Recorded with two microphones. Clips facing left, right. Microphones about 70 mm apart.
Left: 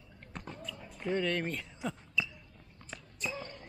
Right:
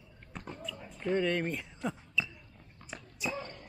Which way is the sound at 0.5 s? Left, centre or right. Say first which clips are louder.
Right 3 dB; centre.